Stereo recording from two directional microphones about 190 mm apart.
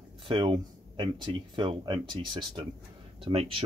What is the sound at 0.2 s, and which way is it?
Speech, 25° right (ahead or behind).